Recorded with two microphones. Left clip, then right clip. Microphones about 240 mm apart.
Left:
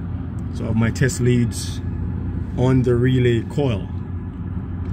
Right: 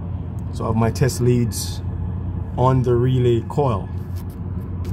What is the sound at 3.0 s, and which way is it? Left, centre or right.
Speech, right.